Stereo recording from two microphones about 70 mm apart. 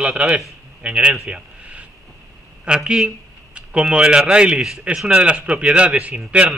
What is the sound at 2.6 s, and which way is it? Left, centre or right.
A man's voice, centre.